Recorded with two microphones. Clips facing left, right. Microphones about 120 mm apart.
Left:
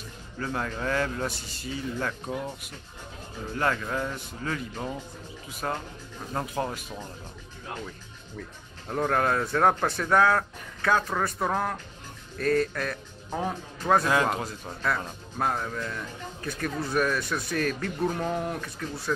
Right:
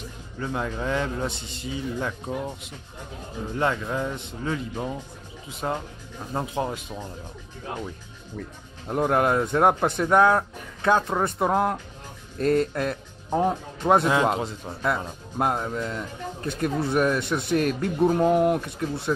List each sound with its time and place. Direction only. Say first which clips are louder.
0.4 s a man's voice: right 2 dB; 15° right (ahead or behind)
8.8 s speech: right 4 dB; 15° right (ahead or behind)